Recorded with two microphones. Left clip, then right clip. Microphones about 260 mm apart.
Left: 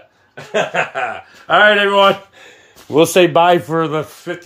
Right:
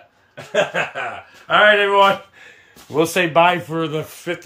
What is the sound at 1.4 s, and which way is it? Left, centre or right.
Speech, left.